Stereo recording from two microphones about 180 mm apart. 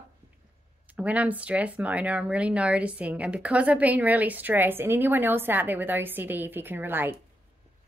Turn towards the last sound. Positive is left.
turn(degrees=-10)  # may be behind; listen again after turning